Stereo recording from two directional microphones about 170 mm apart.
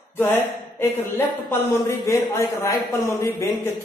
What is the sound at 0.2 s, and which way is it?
Speech, 15° left (ahead or behind).